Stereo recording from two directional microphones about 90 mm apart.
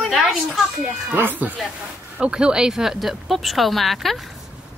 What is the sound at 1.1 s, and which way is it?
Speech, 20° right (ahead or behind).